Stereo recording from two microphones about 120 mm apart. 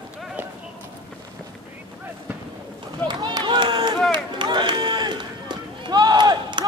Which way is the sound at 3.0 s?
35° right (ahead or behind).